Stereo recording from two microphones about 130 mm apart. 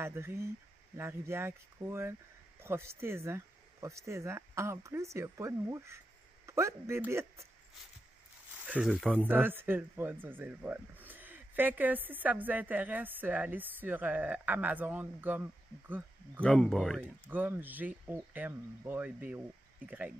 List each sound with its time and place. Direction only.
0.0 s speech: 20° right (ahead or behind)
8.6 s speech: 10° right (ahead or behind)
9.0 s speech: 10° left (ahead or behind)
9.3 s speech: 15° right (ahead or behind)
16.4 s speech: centre (ahead or behind)
17.3 s speech: 15° right (ahead or behind)